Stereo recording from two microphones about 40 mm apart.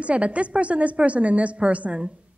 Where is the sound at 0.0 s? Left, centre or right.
Right.